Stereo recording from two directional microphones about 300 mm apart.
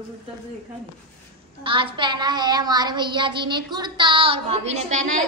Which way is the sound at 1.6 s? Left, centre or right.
Centre.